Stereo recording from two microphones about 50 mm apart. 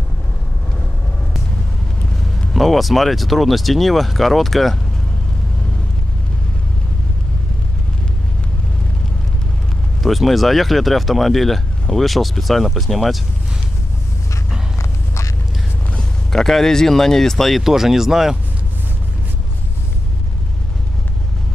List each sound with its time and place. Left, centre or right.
2.1 s speech: centre
10.0 s speech: centre
14.8 s a sound: left
16.3 s speech: centre